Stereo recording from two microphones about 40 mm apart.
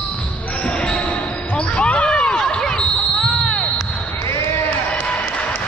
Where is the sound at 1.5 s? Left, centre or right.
Left.